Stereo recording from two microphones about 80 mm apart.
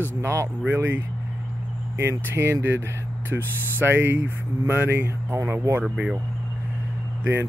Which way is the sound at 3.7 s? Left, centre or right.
Right.